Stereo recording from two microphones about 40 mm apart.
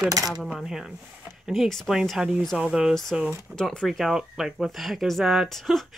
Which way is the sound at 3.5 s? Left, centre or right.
Left.